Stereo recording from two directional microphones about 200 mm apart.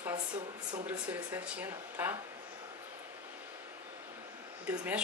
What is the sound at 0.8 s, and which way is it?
A woman's voice, 10° right (ahead or behind).